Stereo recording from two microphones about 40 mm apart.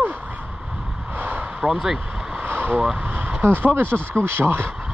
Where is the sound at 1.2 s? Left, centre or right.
Right.